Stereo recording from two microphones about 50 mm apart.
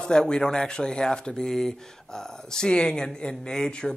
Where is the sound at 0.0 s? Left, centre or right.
Centre.